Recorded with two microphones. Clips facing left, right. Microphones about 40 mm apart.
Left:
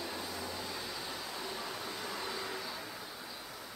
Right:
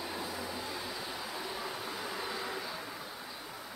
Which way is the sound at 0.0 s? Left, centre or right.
Centre.